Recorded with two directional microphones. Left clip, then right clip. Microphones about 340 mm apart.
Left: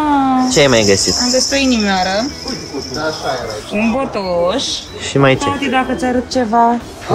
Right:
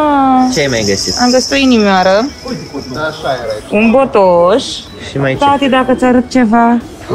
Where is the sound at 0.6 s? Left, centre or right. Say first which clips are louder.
Left 2 dB; centre.